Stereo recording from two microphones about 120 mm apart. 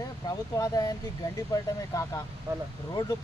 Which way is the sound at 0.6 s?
30° left (ahead or behind).